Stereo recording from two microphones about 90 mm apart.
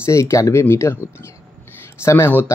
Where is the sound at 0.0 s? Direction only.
35° left (ahead or behind).